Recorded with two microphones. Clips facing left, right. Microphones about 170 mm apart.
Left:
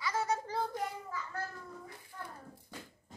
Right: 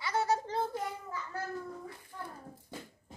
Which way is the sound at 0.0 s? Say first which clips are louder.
Right 3 dB; 30° right (ahead or behind).